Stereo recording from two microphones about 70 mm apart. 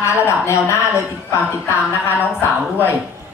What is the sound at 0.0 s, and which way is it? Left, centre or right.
A woman's voice, left.